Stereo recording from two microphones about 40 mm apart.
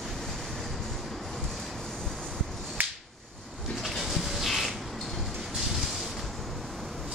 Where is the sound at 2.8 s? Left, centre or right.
Right.